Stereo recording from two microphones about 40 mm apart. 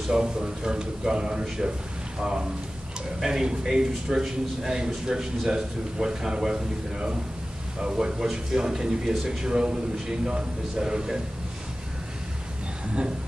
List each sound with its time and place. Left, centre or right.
0.1 s a man's voice: centre
9.1 s speech: centre
9.4 s a man's voice: right